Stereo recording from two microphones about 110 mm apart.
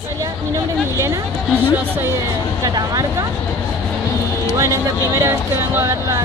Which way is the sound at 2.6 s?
35° right (ahead or behind).